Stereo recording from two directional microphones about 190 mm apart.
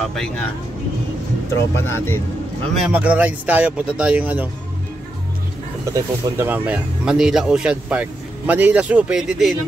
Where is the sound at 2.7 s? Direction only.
5° right (ahead or behind).